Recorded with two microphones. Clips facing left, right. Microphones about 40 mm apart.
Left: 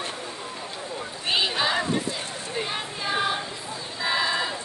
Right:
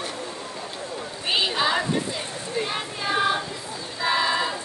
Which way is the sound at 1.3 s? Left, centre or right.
Centre.